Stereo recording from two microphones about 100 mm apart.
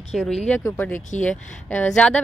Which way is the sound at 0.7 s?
15° left (ahead or behind).